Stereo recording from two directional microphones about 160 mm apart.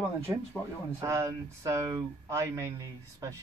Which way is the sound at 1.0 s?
20° right (ahead or behind).